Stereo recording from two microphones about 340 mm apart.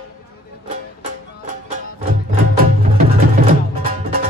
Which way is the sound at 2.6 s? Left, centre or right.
Right.